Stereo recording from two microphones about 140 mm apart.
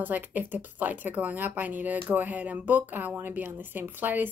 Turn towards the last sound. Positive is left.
turn(degrees=-15)  # may be behind; listen again after turning